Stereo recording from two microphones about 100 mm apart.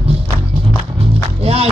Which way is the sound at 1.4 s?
80° right.